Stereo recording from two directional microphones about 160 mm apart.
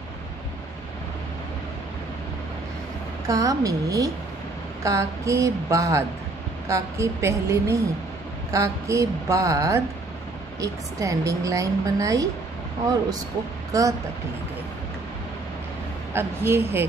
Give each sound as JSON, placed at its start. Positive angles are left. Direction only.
{"t": 3.3, "sound": "a woman's voice", "side_deg": -20}
{"t": 13.7, "sound": "speech", "side_deg": -20}
{"t": 16.1, "sound": "a woman's voice", "side_deg": -15}